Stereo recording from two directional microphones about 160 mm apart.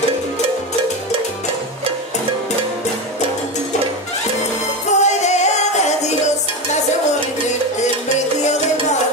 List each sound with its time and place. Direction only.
5.0 s music: 45° left (ahead or behind)